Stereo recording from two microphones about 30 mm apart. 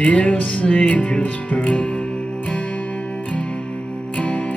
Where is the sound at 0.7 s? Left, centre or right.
Left.